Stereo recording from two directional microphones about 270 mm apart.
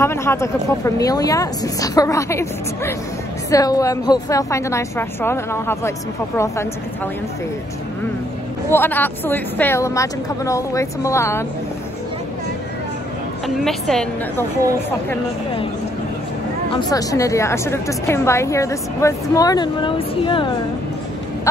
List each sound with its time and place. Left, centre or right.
0.0 s a woman's voice: centre
8.6 s a woman's voice: centre
13.6 s a woman's voice: centre
16.7 s a woman's voice: centre